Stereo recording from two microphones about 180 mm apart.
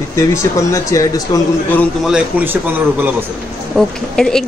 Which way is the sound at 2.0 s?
5° right (ahead or behind).